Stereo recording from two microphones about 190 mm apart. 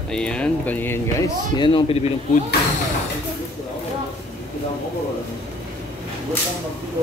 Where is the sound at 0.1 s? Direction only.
5° left (ahead or behind).